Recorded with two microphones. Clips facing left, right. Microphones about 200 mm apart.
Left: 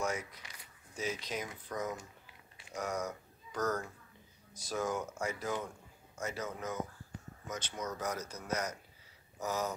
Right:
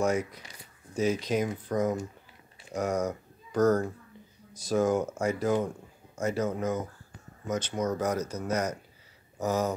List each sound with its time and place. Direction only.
0.9 s speech: 50° right (ahead or behind)